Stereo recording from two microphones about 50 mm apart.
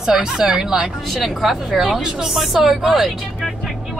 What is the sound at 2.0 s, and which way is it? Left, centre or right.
Speech, centre.